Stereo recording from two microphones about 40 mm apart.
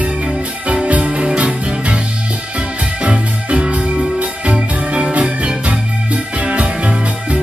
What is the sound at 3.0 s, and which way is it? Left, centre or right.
Music, right.